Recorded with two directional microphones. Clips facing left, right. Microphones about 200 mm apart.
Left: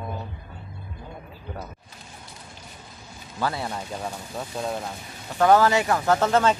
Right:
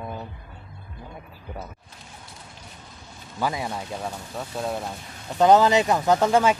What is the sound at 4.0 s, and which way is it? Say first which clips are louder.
Speech: even; centre (ahead or behind).